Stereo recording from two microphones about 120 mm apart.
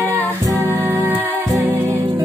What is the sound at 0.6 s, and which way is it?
Music, 20° right (ahead or behind).